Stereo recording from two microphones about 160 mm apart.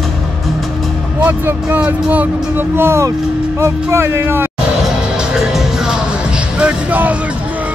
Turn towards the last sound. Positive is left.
turn(degrees=-10)  # may be behind; listen again after turning